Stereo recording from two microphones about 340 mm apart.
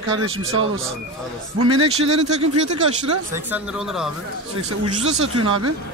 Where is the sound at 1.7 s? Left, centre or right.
Centre.